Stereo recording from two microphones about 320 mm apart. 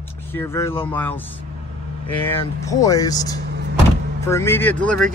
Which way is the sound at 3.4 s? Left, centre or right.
Right.